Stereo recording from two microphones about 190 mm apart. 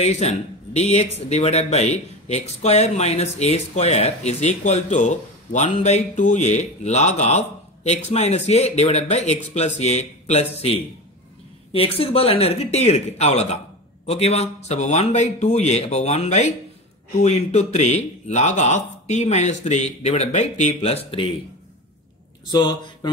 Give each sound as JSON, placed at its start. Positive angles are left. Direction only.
{"t": 0.0, "sound": "speech", "side_deg": 35}